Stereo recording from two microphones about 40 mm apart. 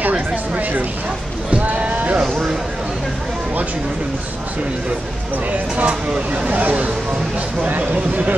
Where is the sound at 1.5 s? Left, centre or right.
Right.